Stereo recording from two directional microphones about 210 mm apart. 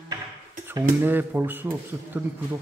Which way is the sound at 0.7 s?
10° right (ahead or behind).